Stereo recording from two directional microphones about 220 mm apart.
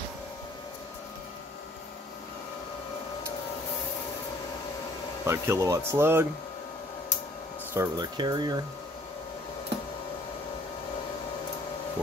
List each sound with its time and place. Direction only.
5.2 s speech: 15° right (ahead or behind)
7.7 s speech: 15° right (ahead or behind)